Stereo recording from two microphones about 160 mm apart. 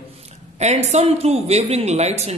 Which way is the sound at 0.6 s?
45° right (ahead or behind).